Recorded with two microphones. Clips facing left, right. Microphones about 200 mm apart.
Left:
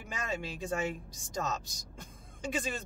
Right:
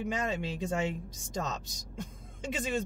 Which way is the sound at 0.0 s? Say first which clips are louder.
Right 5 dB; 20° right (ahead or behind).